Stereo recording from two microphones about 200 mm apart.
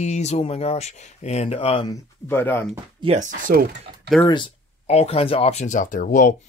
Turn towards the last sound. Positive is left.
turn(degrees=40)  # may be behind; listen again after turning